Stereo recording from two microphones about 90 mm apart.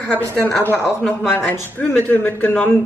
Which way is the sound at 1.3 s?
20° left (ahead or behind).